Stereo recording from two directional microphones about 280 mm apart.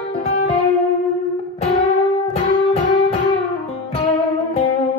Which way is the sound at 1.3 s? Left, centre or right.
Left.